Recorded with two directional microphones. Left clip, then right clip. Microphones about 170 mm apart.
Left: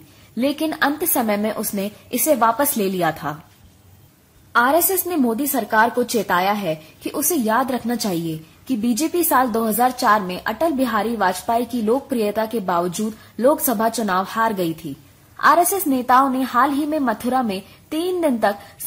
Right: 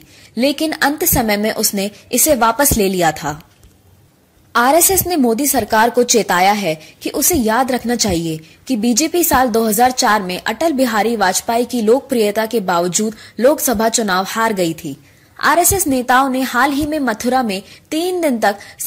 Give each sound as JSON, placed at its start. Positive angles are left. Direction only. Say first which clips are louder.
{"t": 0.4, "sound": "a woman's voice", "louder": "right 4 dB", "side_deg": -10}
{"t": 4.5, "sound": "a woman's voice", "louder": "right 4 dB", "side_deg": -15}